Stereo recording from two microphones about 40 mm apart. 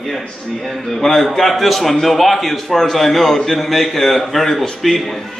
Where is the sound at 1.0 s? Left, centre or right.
Centre.